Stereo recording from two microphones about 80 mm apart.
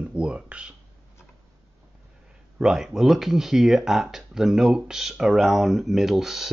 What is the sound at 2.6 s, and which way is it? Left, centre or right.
Speech, centre.